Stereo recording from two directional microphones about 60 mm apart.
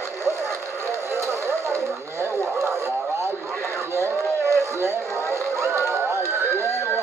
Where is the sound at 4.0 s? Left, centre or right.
Right.